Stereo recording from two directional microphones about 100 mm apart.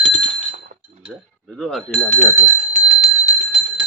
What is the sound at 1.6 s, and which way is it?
Speech, centre (ahead or behind).